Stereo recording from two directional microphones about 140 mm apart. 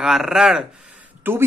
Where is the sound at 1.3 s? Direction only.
15° right (ahead or behind).